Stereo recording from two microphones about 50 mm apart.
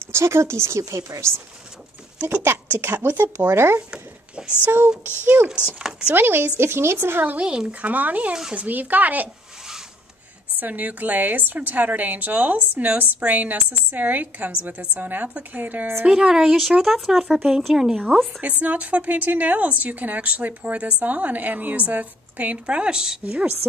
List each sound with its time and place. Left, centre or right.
0.0 s speech: right
2.8 s speech: right
3.1 s speech: right
4.6 s a woman's voice: right
5.8 s speech: centre
6.1 s speech: right
6.6 s speech: right
7.8 s a woman's voice: right
10.6 s a woman's voice: right
16.1 s speech: centre
18.6 s a woman's voice: right